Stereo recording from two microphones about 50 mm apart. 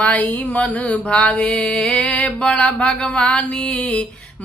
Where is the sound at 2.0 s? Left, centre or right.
Left.